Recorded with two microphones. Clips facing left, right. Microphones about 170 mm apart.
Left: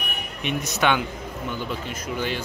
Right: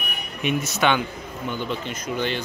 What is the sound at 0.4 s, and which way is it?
Speech, 5° right (ahead or behind).